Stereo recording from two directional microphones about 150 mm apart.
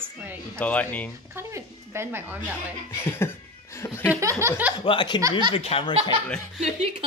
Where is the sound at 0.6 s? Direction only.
10° left (ahead or behind).